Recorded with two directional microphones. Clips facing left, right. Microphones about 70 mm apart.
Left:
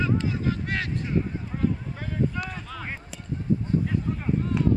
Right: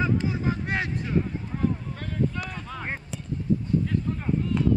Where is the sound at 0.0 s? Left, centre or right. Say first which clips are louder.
Even; right.